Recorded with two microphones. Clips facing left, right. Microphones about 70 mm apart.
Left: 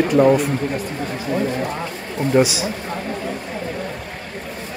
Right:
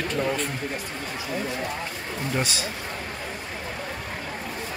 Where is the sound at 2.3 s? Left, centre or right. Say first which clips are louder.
Left 12 dB; centre.